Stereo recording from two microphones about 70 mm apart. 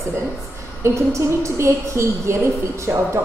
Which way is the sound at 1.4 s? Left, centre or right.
Right.